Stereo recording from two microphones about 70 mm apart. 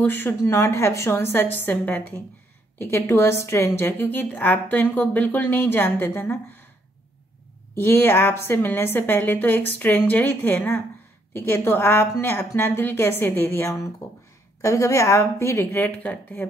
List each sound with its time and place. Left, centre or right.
0.0 s a woman's voice: left
2.8 s a woman's voice: left
7.7 s a woman's voice: left
14.0 s a sound: left
14.6 s a woman's voice: left
15.9 s a woman's voice: left